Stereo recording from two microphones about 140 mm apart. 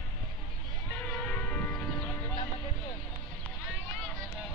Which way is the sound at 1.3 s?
10° left (ahead or behind).